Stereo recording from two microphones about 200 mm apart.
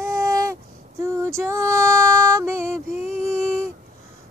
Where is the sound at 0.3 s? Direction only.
15° right (ahead or behind).